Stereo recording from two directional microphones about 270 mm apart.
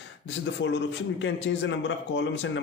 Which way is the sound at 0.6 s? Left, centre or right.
Left.